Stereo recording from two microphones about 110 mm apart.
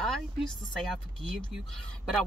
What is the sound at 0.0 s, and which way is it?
Speech, 5° left (ahead or behind).